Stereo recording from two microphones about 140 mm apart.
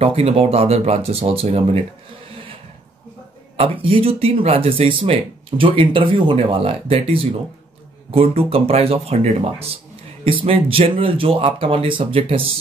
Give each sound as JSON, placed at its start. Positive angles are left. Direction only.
{"t": 0.0, "sound": "speech", "side_deg": -45}
{"t": 3.5, "sound": "speech", "side_deg": -40}